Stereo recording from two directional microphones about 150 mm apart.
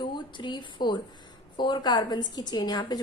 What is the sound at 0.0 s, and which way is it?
A woman's voice, 30° left (ahead or behind).